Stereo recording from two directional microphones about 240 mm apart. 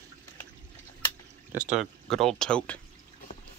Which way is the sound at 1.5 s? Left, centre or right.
Right.